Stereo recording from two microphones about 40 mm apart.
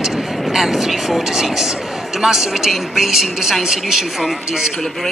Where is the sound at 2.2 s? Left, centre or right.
Centre.